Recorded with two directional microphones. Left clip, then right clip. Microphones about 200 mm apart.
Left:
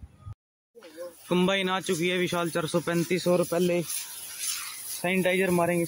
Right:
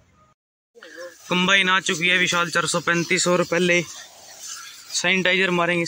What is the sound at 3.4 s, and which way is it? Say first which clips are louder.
Speech: right 5 dB; 45° right (ahead or behind).